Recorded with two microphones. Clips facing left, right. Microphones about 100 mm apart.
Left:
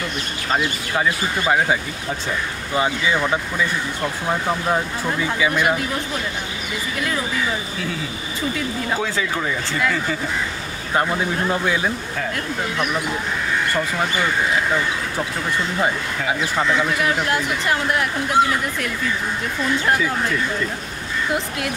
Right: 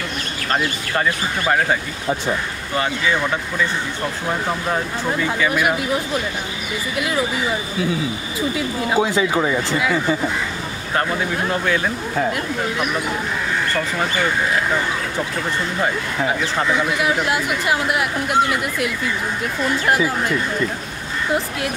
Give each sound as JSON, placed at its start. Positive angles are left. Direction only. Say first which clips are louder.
{"t": 5.5, "sound": "speech", "louder": "left 1 dB", "side_deg": -5}
{"t": 8.5, "sound": "speech", "louder": "right 6 dB", "side_deg": -15}
{"t": 11.6, "sound": "speech", "louder": "right 1 dB", "side_deg": 15}
{"t": 17.0, "sound": "speech", "louder": "right 1 dB", "side_deg": -5}
{"t": 19.9, "sound": "speech", "louder": "right 3 dB", "side_deg": -10}